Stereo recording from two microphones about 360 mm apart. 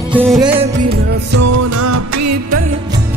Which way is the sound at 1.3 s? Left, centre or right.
Right.